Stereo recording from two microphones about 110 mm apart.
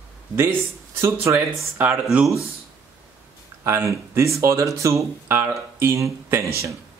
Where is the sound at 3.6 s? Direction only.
25° right (ahead or behind).